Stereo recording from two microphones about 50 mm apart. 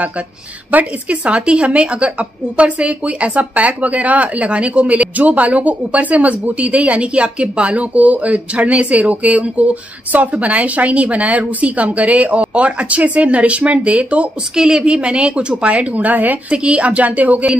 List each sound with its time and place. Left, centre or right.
0.7 s speech: right
14.5 s speech: centre; by 17.6 s right